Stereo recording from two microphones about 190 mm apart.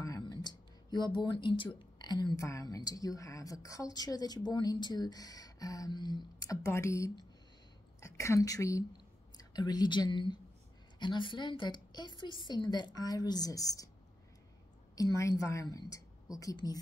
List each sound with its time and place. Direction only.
0.0 s a woman's voice: 20° left (ahead or behind)
15.0 s a woman's voice: 15° left (ahead or behind)